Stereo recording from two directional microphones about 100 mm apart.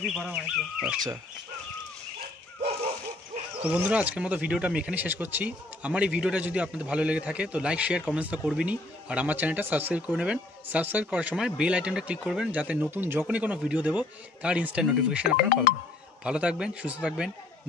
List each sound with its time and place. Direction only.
0.0 s speech: 5° right (ahead or behind)
3.6 s speech: 15° right (ahead or behind)
16.3 s speech: 10° right (ahead or behind)